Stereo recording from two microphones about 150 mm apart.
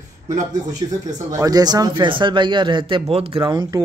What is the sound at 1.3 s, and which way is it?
A man's voice, 25° right (ahead or behind).